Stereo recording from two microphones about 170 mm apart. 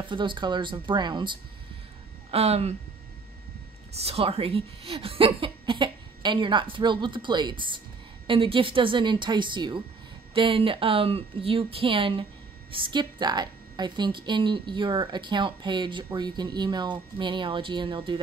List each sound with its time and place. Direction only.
0.0 s a woman's voice: 30° right (ahead or behind)
2.3 s a woman's voice: 40° right (ahead or behind)
3.9 s a woman's voice: 35° right (ahead or behind)